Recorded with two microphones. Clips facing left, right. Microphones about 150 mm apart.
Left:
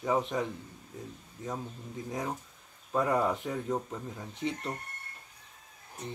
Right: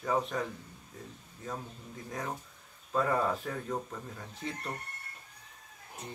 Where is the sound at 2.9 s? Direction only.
15° left (ahead or behind).